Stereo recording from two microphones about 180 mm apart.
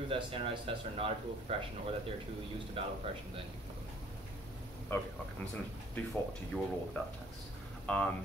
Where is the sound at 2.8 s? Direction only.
30° right (ahead or behind).